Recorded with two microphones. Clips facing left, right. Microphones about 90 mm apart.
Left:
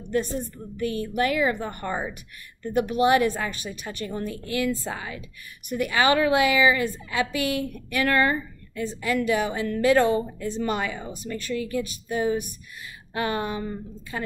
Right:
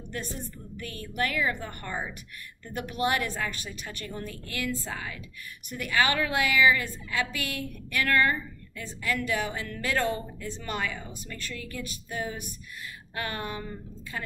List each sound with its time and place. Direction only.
0.7 s a woman's voice: 20° left (ahead or behind)